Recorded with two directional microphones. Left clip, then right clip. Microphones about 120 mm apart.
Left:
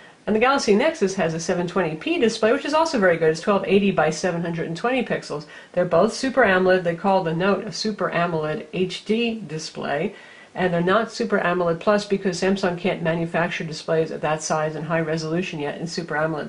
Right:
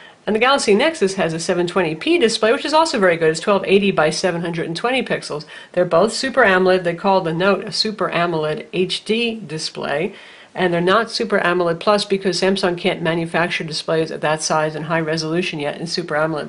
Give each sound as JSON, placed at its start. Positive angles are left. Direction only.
{"t": 0.3, "sound": "speech", "side_deg": -35}
{"t": 10.6, "sound": "speech", "side_deg": -35}